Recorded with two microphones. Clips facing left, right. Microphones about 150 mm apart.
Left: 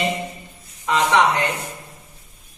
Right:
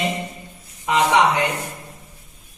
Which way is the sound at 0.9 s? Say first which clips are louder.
Right 1 dB; 15° right (ahead or behind).